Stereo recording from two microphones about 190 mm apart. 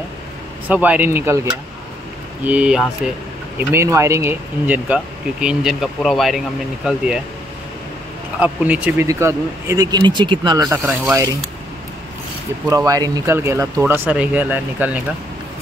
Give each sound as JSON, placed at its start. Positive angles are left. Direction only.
{"t": 0.7, "sound": "speech", "side_deg": -10}
{"t": 3.5, "sound": "speech", "side_deg": -15}
{"t": 8.4, "sound": "speech", "side_deg": -5}
{"t": 12.6, "sound": "speech", "side_deg": -20}